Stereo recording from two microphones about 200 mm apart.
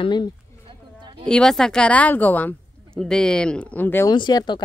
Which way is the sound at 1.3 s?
5° left (ahead or behind).